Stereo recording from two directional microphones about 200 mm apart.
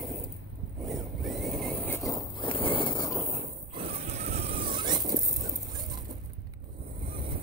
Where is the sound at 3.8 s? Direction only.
30° right (ahead or behind).